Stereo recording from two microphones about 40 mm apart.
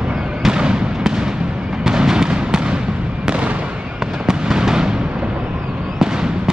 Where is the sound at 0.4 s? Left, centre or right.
Centre.